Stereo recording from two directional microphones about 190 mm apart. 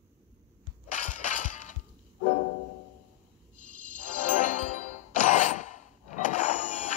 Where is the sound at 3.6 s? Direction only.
5° left (ahead or behind).